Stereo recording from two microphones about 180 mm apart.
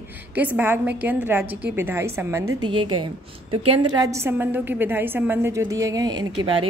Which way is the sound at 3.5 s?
30° right (ahead or behind).